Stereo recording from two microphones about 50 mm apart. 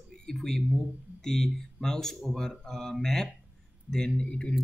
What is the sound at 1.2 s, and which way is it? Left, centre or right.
Speech, centre.